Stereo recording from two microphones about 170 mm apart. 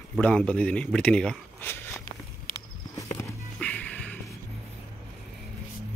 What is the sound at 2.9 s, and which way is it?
Music, 20° left (ahead or behind).